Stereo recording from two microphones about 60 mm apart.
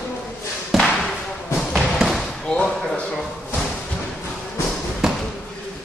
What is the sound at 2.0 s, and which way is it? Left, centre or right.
Basketball bounce, centre.